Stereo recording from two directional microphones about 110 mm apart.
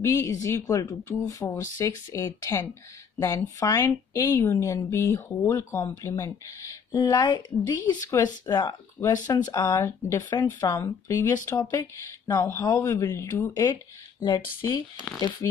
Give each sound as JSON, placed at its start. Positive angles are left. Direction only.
{"t": 0.0, "sound": "speech", "side_deg": 25}